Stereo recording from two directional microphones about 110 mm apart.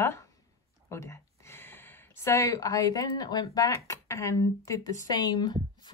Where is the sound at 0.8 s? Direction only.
25° left (ahead or behind).